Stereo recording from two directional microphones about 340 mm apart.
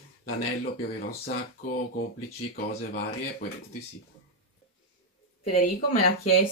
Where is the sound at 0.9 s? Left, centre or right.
Left.